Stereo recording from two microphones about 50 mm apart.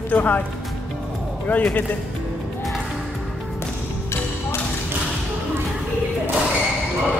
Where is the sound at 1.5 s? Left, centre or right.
Left.